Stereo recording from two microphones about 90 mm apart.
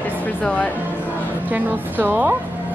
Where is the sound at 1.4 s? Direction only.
20° right (ahead or behind).